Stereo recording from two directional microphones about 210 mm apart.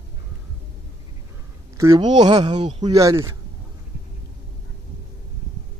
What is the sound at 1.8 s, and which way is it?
Speech, 20° right (ahead or behind).